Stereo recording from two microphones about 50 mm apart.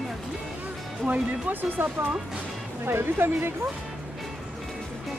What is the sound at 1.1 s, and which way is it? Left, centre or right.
Speech, right.